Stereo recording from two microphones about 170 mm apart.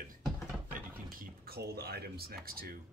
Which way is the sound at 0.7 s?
55° right (ahead or behind).